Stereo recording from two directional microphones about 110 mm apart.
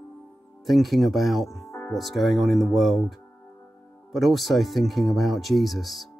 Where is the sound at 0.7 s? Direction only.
Centre (ahead or behind).